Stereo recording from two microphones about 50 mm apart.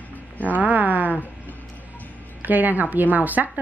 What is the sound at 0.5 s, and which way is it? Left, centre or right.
Speech, right.